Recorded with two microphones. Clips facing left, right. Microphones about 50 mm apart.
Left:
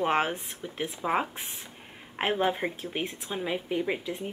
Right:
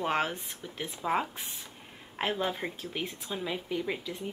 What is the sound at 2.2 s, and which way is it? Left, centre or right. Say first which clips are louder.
Speech: left 4 dB; left.